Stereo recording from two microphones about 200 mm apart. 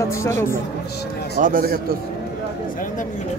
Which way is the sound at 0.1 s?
15° left (ahead or behind).